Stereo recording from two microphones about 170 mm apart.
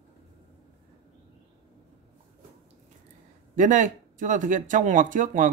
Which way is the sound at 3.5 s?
50° right (ahead or behind).